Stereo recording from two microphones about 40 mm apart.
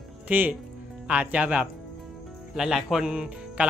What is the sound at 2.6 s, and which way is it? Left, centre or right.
Speech, centre.